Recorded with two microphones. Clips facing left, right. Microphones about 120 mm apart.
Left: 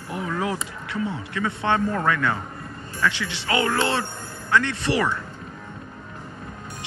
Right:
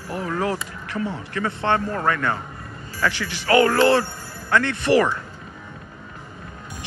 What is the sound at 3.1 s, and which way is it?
Speech, 20° left (ahead or behind).